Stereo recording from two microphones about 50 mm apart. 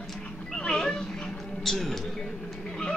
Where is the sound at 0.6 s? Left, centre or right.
Centre.